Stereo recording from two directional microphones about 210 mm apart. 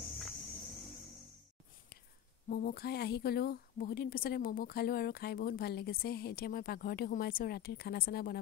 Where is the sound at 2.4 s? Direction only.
45° left (ahead or behind).